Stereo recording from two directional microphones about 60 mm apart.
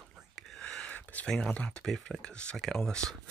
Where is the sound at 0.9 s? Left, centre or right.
Left.